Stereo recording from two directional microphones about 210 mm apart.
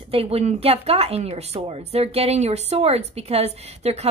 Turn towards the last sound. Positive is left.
turn(degrees=-30)  # may be behind; listen again after turning